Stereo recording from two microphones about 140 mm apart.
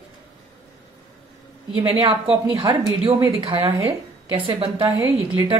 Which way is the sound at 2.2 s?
40° right (ahead or behind).